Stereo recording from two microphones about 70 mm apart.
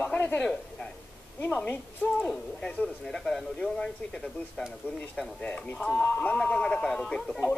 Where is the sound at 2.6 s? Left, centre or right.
Centre.